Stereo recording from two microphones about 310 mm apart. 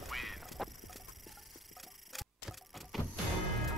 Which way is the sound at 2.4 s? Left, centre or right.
Centre.